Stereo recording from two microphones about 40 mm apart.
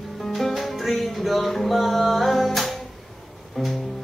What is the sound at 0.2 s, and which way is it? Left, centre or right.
Music, centre.